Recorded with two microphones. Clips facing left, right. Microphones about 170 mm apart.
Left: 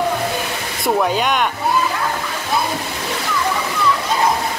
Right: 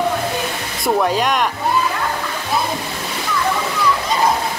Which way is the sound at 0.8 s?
Centre (ahead or behind).